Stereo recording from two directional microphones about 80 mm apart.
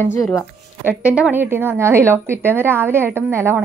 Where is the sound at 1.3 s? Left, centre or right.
Right.